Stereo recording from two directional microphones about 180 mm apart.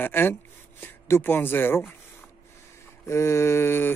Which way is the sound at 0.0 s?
10° left (ahead or behind).